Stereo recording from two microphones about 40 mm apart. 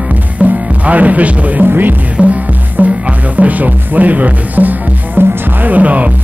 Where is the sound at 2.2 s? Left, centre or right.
Right.